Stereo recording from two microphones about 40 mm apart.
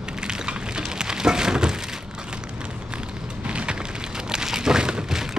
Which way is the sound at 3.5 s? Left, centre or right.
Right.